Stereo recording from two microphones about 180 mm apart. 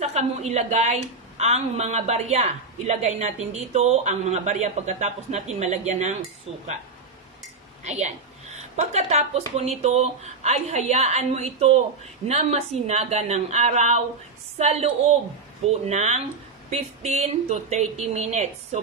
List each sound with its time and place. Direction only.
0.0 s a woman's voice: 40° right (ahead or behind)
7.8 s a woman's voice: 40° right (ahead or behind)